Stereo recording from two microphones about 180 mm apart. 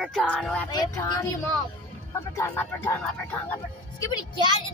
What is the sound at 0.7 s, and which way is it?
Speech, 25° left (ahead or behind).